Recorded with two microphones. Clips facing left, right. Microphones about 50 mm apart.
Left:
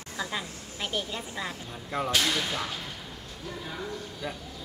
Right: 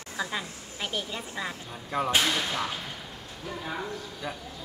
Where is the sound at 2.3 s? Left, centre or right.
Centre.